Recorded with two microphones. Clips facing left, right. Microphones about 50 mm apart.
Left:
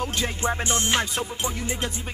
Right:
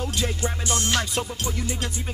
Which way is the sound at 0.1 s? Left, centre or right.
Left.